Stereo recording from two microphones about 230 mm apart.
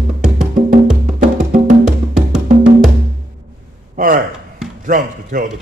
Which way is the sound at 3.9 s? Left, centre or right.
Right.